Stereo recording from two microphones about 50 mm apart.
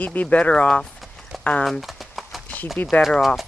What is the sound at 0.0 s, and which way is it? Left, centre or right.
Speech, left.